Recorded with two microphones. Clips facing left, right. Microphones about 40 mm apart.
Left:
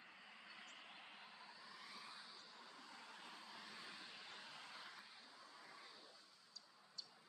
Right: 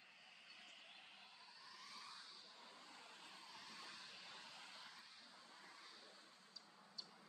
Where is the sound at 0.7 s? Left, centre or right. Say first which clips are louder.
Left 3 dB; centre.